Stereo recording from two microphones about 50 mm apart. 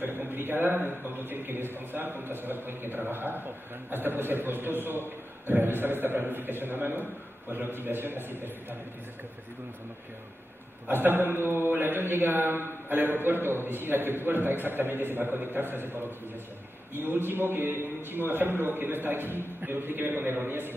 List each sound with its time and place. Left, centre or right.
0.0 s a man's voice: right
10.9 s a man's voice: right